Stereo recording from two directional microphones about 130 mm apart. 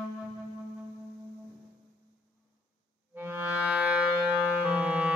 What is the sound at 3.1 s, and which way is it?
Music, 15° right (ahead or behind).